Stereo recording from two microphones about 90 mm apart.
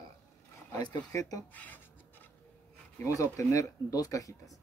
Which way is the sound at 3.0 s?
35° left (ahead or behind).